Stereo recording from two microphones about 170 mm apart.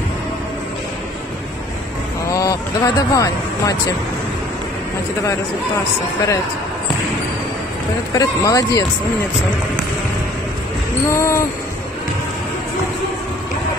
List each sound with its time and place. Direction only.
2.2 s vehicle: 20° left (ahead or behind)
8.1 s speech: 20° left (ahead or behind)
11.1 s a sound: 15° left (ahead or behind)